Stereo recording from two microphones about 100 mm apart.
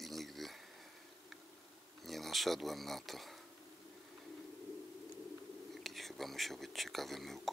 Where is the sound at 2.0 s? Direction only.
Centre (ahead or behind).